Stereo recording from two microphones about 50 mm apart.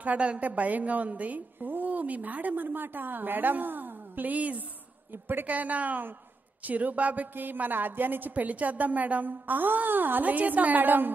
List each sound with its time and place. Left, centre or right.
0.0 s a woman's voice: right
5.1 s a woman's voice: right
5.5 s a woman's voice: right